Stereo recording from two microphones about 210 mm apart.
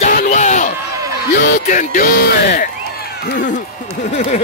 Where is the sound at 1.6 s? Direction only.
40° left (ahead or behind).